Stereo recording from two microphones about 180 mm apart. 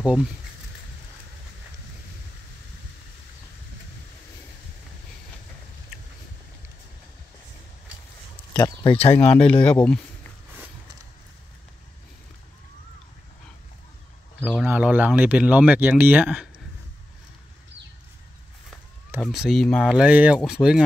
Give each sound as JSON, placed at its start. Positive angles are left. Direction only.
{"t": 0.0, "sound": "speech", "side_deg": -5}
{"t": 8.5, "sound": "speech", "side_deg": 20}
{"t": 9.0, "sound": "speech", "side_deg": 35}
{"t": 9.4, "sound": "speech", "side_deg": 5}
{"t": 14.7, "sound": "speech", "side_deg": -10}
{"t": 19.2, "sound": "speech", "side_deg": 0}